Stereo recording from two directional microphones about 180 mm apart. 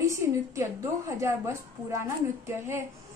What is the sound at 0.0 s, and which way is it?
A woman's voice, 15° right (ahead or behind).